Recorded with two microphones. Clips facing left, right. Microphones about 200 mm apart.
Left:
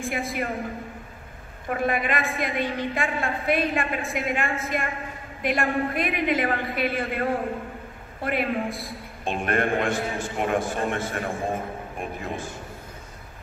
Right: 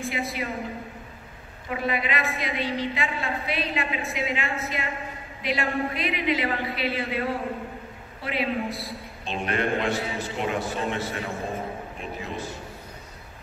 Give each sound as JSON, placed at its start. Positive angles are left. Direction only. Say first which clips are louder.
{"t": 0.0, "sound": "a woman's voice", "louder": "left 2 dB", "side_deg": 50}
{"t": 1.7, "sound": "a woman's voice", "louder": "left 3 dB", "side_deg": 50}